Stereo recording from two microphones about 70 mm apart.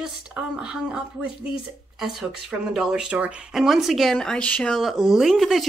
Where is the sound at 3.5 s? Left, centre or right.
Centre.